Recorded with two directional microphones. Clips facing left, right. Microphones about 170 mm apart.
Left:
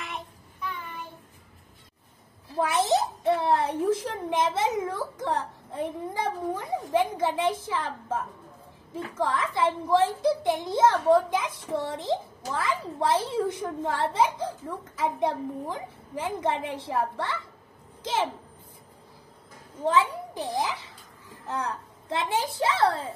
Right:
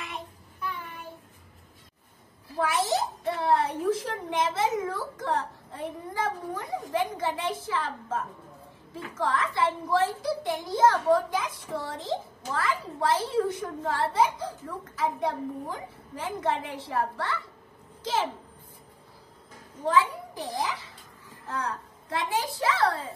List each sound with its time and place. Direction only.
2.5 s a child's voice: 20° left (ahead or behind)
19.9 s a child's voice: 20° left (ahead or behind)